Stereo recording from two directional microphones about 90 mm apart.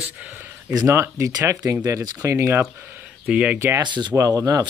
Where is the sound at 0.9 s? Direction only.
30° right (ahead or behind).